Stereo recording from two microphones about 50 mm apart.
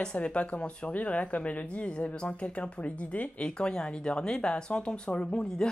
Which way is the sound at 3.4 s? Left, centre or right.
Centre.